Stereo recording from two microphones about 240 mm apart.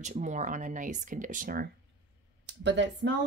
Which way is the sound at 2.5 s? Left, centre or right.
Right.